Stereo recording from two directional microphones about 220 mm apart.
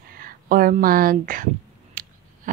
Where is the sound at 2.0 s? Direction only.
40° right (ahead or behind).